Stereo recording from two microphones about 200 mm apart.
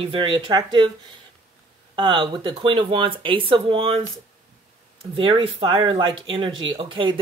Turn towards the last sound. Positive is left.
turn(degrees=-25)  # may be behind; listen again after turning